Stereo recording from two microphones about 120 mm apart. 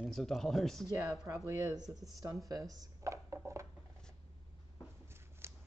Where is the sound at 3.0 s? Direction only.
25° right (ahead or behind).